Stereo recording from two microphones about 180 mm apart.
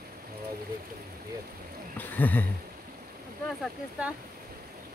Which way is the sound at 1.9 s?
10° left (ahead or behind).